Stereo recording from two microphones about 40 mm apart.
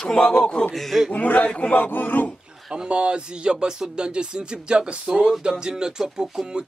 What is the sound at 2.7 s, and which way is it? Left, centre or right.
Speech, right.